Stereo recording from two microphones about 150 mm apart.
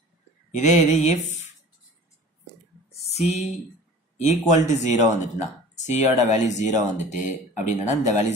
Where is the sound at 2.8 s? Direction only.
45° left (ahead or behind).